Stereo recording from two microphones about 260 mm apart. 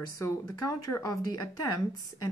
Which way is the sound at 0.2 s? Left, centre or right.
Centre.